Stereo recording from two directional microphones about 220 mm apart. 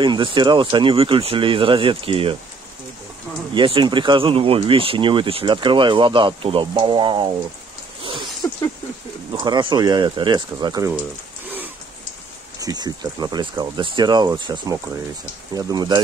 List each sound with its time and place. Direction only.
0.0 s speech: 20° right (ahead or behind)
3.5 s speech: 20° right (ahead or behind)
8.4 s a sound: 15° left (ahead or behind)
9.3 s speech: 20° right (ahead or behind)
11.4 s a sound: 10° right (ahead or behind)
12.5 s speech: 15° right (ahead or behind)